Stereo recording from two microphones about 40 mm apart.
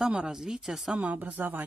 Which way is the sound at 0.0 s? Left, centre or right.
Centre.